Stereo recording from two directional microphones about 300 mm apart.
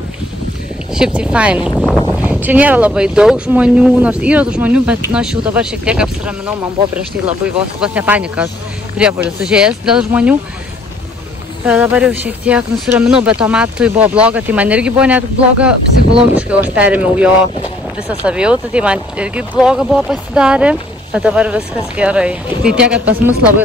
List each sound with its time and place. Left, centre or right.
0.9 s speech: centre
11.6 s speech: centre